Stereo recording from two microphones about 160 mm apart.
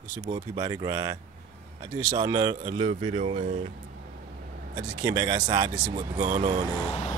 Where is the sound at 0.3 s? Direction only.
25° right (ahead or behind).